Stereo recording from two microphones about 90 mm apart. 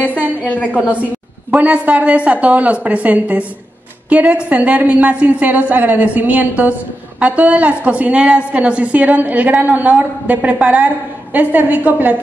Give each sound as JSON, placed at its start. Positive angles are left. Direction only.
{"t": 1.5, "sound": "a woman's voice", "side_deg": -15}